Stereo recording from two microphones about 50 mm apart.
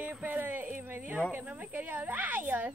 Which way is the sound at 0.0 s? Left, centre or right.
Right.